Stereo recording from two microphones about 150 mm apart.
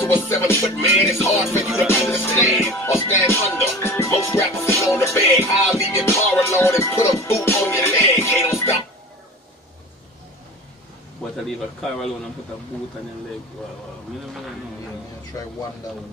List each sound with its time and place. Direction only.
0.0 s music: 15° left (ahead or behind)
11.4 s a man's voice: centre (ahead or behind)
15.3 s speech: 20° left (ahead or behind)